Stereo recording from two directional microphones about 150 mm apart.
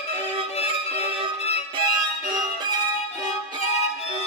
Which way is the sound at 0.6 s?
45° left (ahead or behind).